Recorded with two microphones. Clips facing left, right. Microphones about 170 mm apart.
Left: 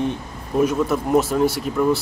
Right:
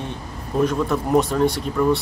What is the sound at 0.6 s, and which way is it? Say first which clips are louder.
Speech: left 1 dB; 5° left (ahead or behind).